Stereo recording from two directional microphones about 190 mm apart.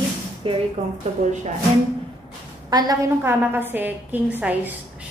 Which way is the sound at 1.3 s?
40° right (ahead or behind).